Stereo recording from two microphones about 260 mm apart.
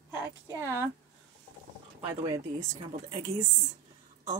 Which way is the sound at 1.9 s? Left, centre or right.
Centre.